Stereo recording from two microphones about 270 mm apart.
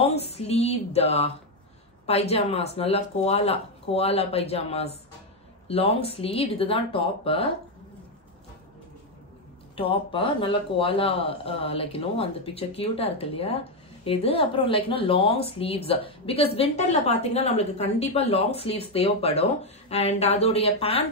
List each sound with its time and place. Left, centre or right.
0.0 s a sound: left
2.0 s a woman's voice: left
9.8 s a woman's voice: centre